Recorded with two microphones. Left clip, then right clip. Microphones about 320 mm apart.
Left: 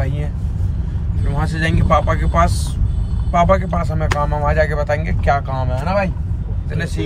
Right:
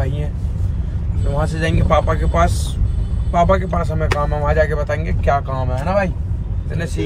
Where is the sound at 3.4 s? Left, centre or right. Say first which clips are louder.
Even; left.